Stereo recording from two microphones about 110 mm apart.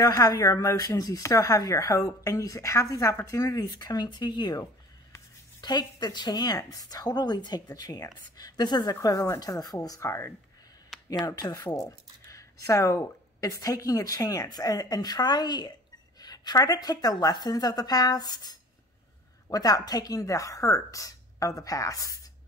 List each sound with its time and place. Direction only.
0.0 s speech: 35° left (ahead or behind)
10.9 s a sound: centre (ahead or behind)
11.2 s speech: 35° left (ahead or behind)